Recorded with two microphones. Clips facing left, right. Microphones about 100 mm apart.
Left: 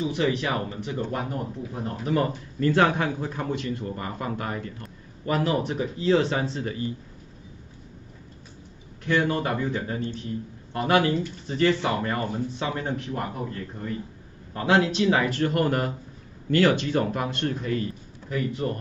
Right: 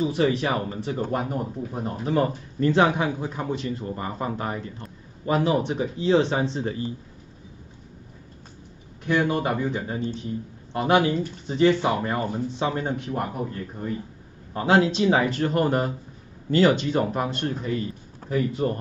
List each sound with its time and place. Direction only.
0.0 s speech: 35° right (ahead or behind)
1.1 s speech: 20° right (ahead or behind)
9.0 s speech: 15° right (ahead or behind)
14.5 s speech: 25° right (ahead or behind)